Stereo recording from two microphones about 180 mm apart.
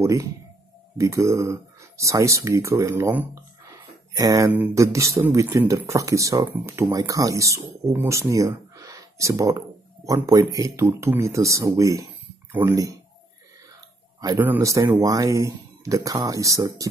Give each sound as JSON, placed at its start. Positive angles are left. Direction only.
{"t": 0.0, "sound": "speech", "side_deg": -15}
{"t": 14.2, "sound": "speech", "side_deg": -15}